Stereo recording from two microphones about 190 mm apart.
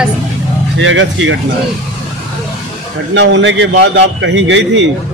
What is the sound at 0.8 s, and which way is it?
Speech, 85° right.